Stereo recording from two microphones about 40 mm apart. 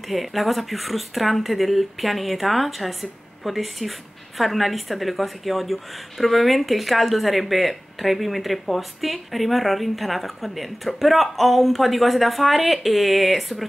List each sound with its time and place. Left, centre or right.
0.1 s a woman's voice: centre